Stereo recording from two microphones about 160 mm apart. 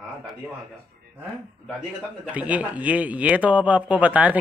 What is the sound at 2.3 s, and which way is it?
Speech, 10° right (ahead or behind).